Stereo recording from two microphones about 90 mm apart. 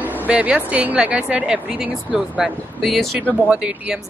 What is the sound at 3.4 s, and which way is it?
Speech, 10° right (ahead or behind).